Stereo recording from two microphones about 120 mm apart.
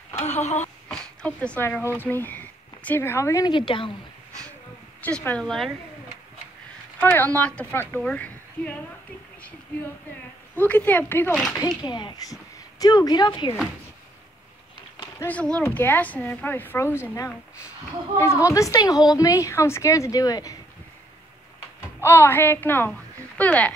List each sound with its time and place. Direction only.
0.2 s speech: 70° left (ahead or behind)
0.8 s a sound: 10° left (ahead or behind)
1.9 s speech: 15° left (ahead or behind)
3.4 s speech: 45° left (ahead or behind)
5.0 s speech: 15° left (ahead or behind)
5.4 s speech: centre (ahead or behind)
7.0 s speech: 15° left (ahead or behind)
10.7 s speech: 15° left (ahead or behind)
11.8 s a woman's voice: 35° left (ahead or behind)
15.2 s a woman's voice: 10° left (ahead or behind); by 20.5 s 30° left (ahead or behind)
22.0 s a woman's voice: 20° left (ahead or behind)